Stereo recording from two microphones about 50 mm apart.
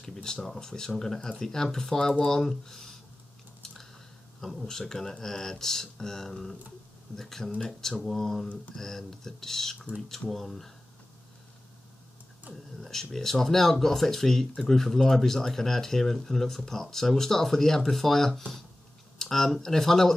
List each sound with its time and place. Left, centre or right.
0.0 s speech: centre
4.4 s speech: centre
12.5 s speech: right
12.8 s speech: centre